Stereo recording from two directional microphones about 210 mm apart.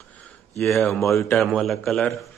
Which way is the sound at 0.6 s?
Centre (ahead or behind).